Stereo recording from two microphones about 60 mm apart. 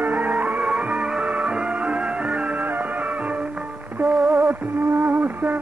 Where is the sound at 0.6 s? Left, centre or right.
Centre.